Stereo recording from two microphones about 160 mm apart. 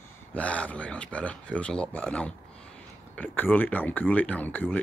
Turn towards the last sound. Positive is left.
turn(degrees=10)  # may be behind; listen again after turning